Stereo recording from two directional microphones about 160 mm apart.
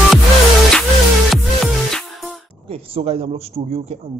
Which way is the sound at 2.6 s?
35° right (ahead or behind).